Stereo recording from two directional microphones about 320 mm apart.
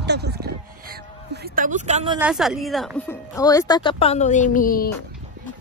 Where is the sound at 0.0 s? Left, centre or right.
Right.